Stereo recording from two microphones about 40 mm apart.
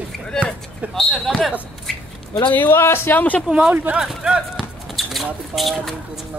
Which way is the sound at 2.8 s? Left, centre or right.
Left.